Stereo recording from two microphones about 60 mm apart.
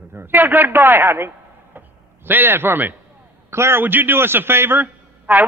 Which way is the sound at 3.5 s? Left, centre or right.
Right.